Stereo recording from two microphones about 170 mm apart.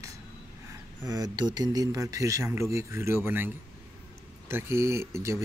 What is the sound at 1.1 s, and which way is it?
Speech, 25° right (ahead or behind).